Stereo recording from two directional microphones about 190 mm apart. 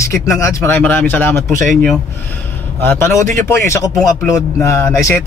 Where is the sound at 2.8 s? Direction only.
10° left (ahead or behind).